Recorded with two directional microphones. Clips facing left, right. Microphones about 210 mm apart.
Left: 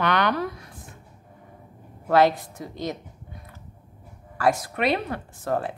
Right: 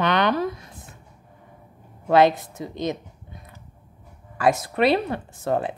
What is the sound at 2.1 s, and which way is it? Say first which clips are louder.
Speech: right 2 dB; 20° right (ahead or behind).